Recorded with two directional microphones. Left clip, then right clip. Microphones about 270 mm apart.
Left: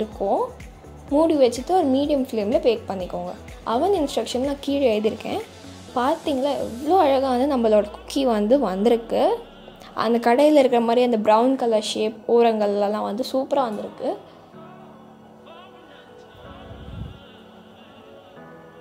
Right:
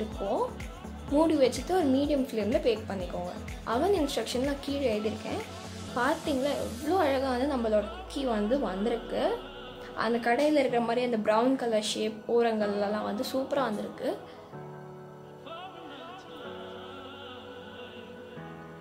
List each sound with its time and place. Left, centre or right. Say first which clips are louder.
0.2 s a woman's voice: left 8 dB; left